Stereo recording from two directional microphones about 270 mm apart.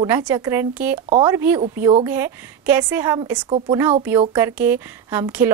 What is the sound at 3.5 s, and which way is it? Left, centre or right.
A woman's voice, centre.